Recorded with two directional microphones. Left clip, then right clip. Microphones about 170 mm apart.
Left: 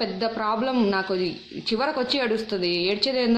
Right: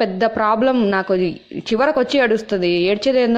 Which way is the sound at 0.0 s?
40° right (ahead or behind).